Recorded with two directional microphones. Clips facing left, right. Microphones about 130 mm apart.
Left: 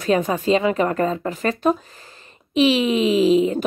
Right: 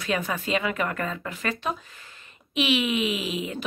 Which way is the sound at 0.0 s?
40° left (ahead or behind).